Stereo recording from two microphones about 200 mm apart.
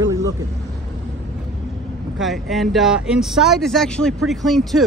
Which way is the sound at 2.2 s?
Centre (ahead or behind).